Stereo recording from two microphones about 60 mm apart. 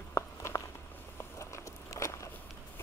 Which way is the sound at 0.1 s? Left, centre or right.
Left.